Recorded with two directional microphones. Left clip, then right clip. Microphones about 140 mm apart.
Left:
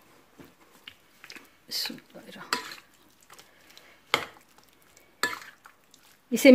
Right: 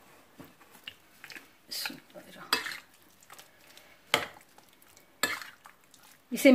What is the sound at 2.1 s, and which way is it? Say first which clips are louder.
Stir: left 1 dB; 70° left (ahead or behind).